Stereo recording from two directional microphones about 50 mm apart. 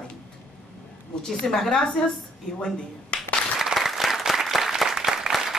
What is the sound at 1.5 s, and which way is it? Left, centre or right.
Speech, centre.